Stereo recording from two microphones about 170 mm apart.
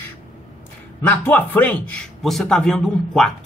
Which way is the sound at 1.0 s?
10° left (ahead or behind).